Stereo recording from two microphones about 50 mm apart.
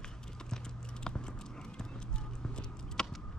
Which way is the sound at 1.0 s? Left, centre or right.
Centre.